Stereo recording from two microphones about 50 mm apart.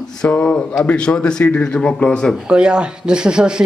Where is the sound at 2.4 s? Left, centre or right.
Centre.